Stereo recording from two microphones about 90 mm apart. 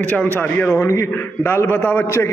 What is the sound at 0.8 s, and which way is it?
Mantra, 30° left (ahead or behind).